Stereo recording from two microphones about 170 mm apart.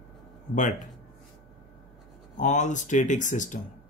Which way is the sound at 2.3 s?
45° left (ahead or behind).